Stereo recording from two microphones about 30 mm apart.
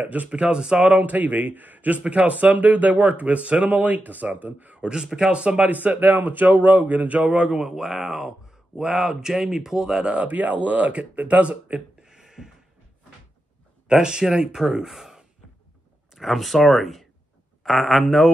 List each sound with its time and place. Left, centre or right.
0.0 s speech: right
0.3 s speech: right
0.8 s speech: right
2.0 s speech: right
3.6 s speech: right
5.3 s speech: right
5.7 s speech: right
7.2 s speech: right
7.8 s speech: centre
10.1 s speech: right
10.9 s speech: right
12.0 s a sound: centre
13.9 s speech: right
16.2 s speech: centre